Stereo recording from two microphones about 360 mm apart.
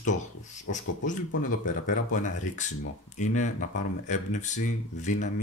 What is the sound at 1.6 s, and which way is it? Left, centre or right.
Speech, left.